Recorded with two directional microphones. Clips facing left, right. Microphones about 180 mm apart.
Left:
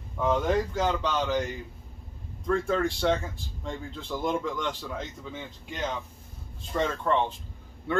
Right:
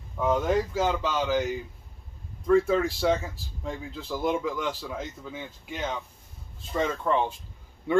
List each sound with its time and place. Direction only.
0.2 s speech: 5° right (ahead or behind)
7.9 s speech: 15° right (ahead or behind)